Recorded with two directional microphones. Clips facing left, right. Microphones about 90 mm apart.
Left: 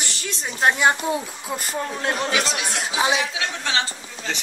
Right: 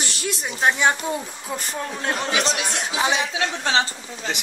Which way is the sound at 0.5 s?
5° left (ahead or behind).